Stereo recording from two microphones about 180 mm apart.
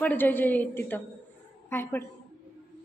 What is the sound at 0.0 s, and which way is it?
A woman's voice, 10° left (ahead or behind).